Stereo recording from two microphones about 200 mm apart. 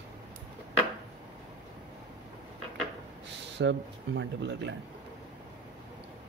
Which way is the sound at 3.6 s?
65° right (ahead or behind).